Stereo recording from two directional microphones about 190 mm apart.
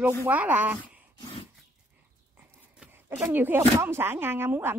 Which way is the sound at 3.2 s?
10° right (ahead or behind).